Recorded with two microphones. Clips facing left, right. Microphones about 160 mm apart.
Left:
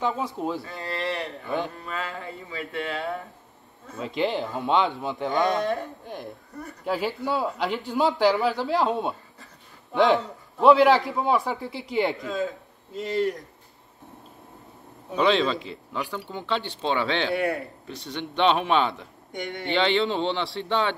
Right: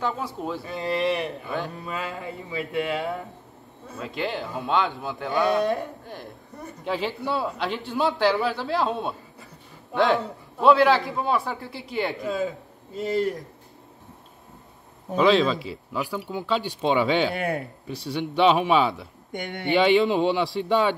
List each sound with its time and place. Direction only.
0.0 s a man's voice: 15° left (ahead or behind)
0.7 s speech: 20° right (ahead or behind)
4.2 s speech: 20° left (ahead or behind)
5.4 s speech: 10° right (ahead or behind)
6.8 s a man's voice: 10° left (ahead or behind)
12.4 s a man's voice: centre (ahead or behind)
15.1 s speech: centre (ahead or behind)
19.3 s speech: 60° right (ahead or behind)
19.7 s speech: 10° right (ahead or behind)